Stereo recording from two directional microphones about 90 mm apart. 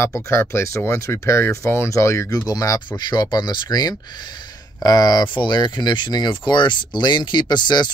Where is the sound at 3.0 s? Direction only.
50° left (ahead or behind).